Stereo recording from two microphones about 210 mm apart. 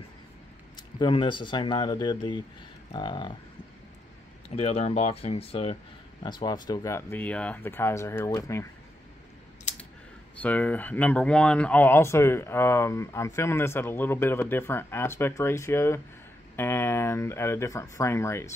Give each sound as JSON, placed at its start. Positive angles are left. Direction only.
{"t": 0.9, "sound": "speech", "side_deg": 25}
{"t": 4.5, "sound": "speech", "side_deg": 30}
{"t": 10.4, "sound": "speech", "side_deg": 5}